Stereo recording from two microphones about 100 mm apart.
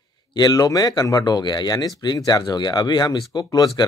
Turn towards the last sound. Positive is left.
turn(degrees=40)  # may be behind; listen again after turning